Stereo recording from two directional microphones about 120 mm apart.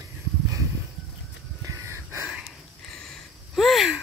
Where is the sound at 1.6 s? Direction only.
25° right (ahead or behind).